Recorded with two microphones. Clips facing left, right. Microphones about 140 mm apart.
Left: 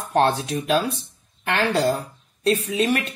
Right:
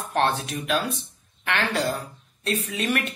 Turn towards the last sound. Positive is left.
turn(degrees=30)  # may be behind; listen again after turning